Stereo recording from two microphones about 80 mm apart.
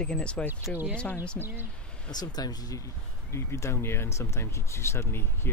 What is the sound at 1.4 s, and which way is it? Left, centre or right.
Speech, right.